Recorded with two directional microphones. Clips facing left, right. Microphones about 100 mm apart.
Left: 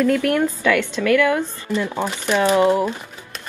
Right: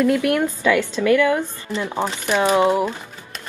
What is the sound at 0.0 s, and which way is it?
Speech, 15° right (ahead or behind).